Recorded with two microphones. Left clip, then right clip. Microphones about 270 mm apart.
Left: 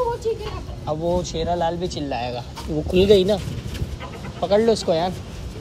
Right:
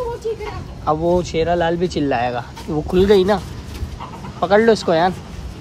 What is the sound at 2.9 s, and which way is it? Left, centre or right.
Speech, centre.